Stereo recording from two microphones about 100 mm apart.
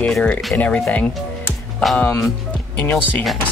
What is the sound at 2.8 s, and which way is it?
Speech, 20° left (ahead or behind).